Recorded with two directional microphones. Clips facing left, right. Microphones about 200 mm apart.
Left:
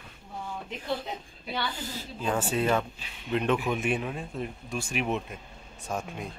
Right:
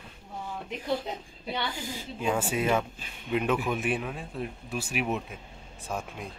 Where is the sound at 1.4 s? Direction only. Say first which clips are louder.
Right 1 dB; 15° right (ahead or behind).